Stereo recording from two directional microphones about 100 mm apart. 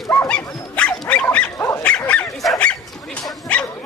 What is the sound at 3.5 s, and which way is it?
Bow-wow, 10° left (ahead or behind).